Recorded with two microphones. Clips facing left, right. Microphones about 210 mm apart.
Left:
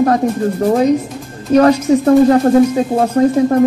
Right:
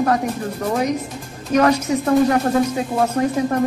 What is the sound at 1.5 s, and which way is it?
Speech, 30° left (ahead or behind).